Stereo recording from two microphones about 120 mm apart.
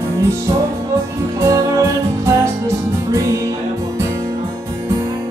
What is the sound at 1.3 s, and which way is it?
Music, 25° right (ahead or behind).